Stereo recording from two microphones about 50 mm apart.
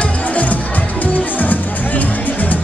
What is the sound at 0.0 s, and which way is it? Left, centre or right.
Music, left.